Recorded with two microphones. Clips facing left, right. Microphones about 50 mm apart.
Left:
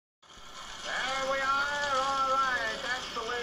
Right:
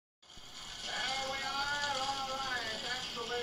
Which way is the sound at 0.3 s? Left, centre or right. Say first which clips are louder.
Left 5 dB; left.